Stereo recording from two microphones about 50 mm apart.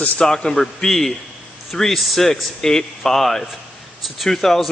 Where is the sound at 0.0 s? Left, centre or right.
Left.